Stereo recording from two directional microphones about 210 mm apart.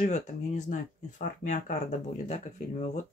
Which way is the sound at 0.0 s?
35° left (ahead or behind).